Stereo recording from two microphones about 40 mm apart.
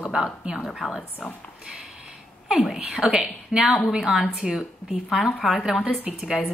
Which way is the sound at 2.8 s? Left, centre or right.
Right.